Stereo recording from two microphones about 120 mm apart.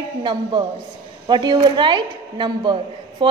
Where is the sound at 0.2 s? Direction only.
45° right (ahead or behind).